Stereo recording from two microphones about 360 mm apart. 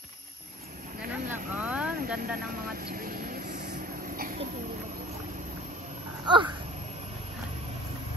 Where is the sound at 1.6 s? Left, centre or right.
Centre.